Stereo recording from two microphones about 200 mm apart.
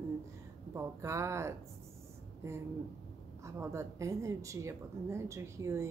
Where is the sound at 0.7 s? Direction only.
15° right (ahead or behind).